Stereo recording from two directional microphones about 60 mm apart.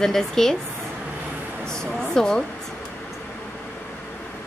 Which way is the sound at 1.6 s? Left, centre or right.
Centre.